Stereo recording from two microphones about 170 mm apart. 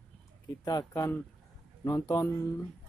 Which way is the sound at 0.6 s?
20° left (ahead or behind).